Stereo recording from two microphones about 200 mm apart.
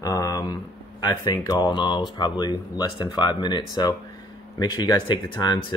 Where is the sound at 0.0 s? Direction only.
15° left (ahead or behind).